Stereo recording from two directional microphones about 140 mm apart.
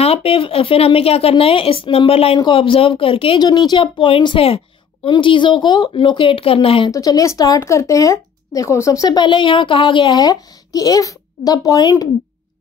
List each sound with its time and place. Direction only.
0.0 s speech: 45° left (ahead or behind)
3.4 s speech: 30° left (ahead or behind)
6.9 s speech: 25° left (ahead or behind)